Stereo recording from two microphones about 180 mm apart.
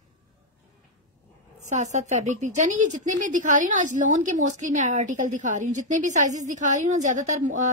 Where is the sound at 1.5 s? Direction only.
40° right (ahead or behind).